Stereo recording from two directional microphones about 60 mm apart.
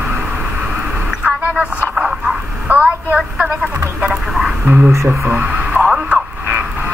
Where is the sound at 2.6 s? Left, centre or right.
Right.